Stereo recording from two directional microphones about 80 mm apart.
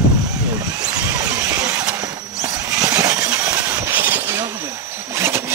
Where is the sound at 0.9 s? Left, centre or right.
Right.